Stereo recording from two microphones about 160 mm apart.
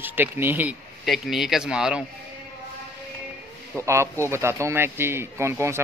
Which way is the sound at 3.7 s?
15° right (ahead or behind).